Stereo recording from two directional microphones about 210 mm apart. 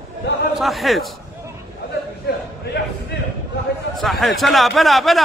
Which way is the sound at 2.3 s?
50° left (ahead or behind).